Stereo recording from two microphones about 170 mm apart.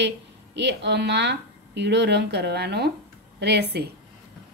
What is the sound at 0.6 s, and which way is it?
Speech, 90° right.